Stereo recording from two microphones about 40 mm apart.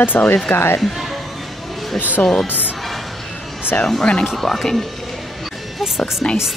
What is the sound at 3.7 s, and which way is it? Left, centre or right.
Speech, left.